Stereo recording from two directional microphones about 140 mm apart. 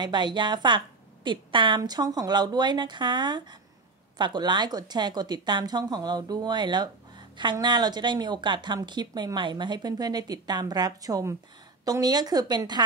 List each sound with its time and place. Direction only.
0.0 s speech: 30° right (ahead or behind)